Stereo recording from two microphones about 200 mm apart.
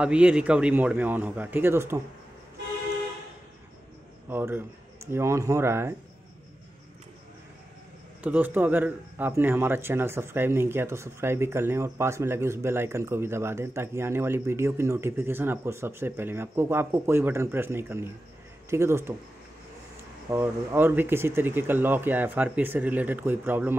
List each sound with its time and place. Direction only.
0.0 s a man's voice: 5° right (ahead or behind)
4.3 s a man's voice: 10° right (ahead or behind)
8.2 s a man's voice: 10° right (ahead or behind)
20.2 s a man's voice: 10° right (ahead or behind)